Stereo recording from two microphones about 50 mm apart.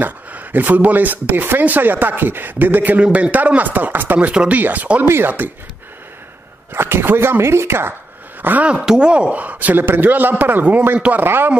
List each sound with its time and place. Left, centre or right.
0.0 s speech: right
4.2 s speech: right
5.0 s speech: right
6.7 s speech: right
8.4 s speech: right
8.6 s speech: centre; by 11.5 s right